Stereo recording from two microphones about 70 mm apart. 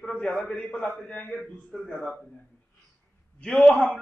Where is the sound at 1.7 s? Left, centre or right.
Centre.